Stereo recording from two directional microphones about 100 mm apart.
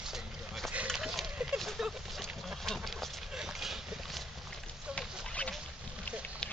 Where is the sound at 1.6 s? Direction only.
Centre (ahead or behind).